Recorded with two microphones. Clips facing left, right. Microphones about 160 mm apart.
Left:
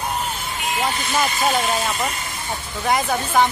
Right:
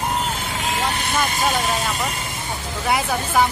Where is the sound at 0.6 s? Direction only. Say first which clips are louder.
Left 1 dB; 80° right.